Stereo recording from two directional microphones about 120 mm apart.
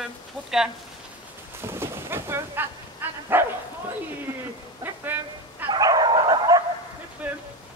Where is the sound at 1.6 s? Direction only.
20° right (ahead or behind).